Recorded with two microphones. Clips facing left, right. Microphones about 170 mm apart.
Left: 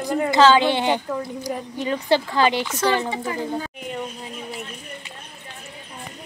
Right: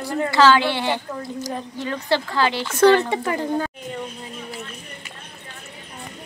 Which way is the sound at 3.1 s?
65° right (ahead or behind).